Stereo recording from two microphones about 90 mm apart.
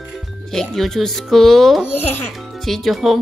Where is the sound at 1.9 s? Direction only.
20° left (ahead or behind).